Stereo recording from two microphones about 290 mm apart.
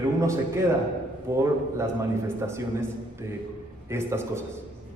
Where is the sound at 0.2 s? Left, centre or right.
Centre.